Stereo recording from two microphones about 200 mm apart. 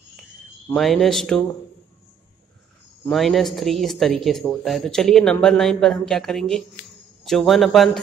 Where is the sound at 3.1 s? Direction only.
Centre (ahead or behind).